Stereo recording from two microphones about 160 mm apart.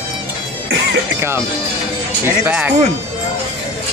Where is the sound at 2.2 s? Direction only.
10° right (ahead or behind).